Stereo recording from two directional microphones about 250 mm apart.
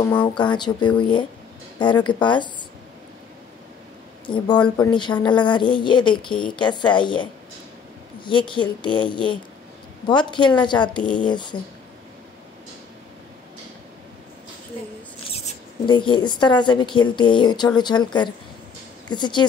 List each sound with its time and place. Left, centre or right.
0.0 s speech: centre
0.4 s a woman's voice: centre
4.3 s a woman's voice: centre
15.3 s a woman's voice: left